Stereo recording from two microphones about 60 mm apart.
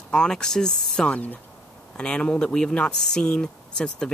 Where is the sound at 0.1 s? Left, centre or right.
Centre.